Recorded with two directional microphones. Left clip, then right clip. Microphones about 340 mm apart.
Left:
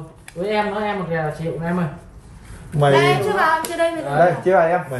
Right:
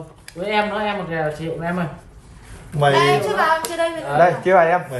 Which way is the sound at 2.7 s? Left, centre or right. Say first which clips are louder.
Even; centre.